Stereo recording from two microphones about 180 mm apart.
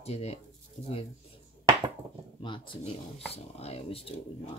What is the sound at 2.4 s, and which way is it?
Speech, 30° left (ahead or behind).